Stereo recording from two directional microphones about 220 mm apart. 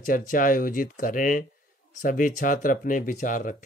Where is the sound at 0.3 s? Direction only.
40° left (ahead or behind).